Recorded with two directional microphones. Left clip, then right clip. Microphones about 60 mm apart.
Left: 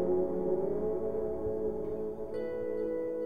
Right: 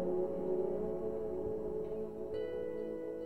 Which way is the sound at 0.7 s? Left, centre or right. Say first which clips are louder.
Left 5 dB; right.